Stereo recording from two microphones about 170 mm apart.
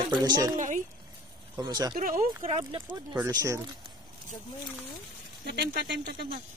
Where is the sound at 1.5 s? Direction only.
20° right (ahead or behind).